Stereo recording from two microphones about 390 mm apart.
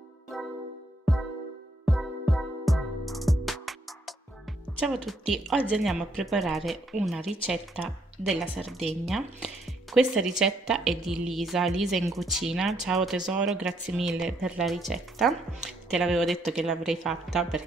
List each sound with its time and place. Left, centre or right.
0.3 s music: centre
1.9 s music: centre
4.7 s a woman's voice: centre